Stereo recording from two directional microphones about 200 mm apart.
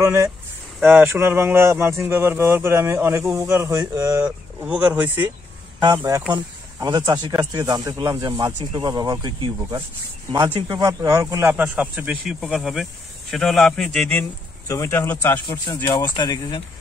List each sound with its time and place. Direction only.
0.0 s speech: 15° right (ahead or behind)
0.7 s speech: 5° right (ahead or behind); by 16.6 s 20° left (ahead or behind)